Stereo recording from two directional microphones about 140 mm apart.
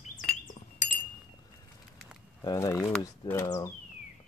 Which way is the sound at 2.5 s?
20° left (ahead or behind).